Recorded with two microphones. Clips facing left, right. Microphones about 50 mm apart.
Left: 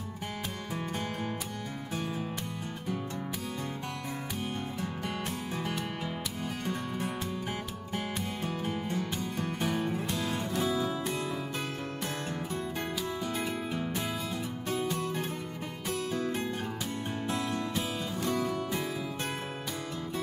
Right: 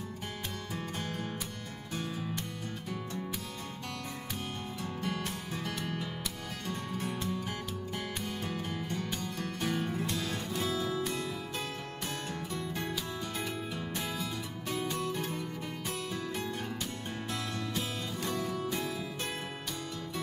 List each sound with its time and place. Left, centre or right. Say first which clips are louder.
0.7 s music: left 4 dB; left
4.7 s music: left 1 dB; left
8.5 s music: left 3 dB; centre
10.5 s music: left 3 dB; centre
12.3 s music: left 3 dB; left
16.0 s music: left 7 dB; left